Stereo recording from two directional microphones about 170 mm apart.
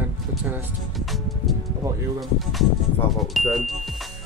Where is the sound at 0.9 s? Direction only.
Centre (ahead or behind).